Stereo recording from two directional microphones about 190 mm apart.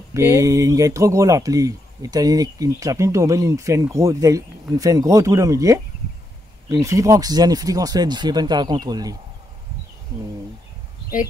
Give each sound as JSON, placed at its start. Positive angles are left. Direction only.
{"t": 0.1, "sound": "speech", "side_deg": -15}